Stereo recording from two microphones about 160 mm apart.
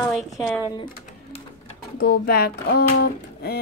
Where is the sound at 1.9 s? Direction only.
80° left.